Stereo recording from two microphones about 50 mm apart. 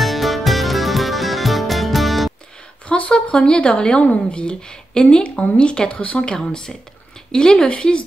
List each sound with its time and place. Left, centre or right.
0.0 s music: centre
2.9 s speech: left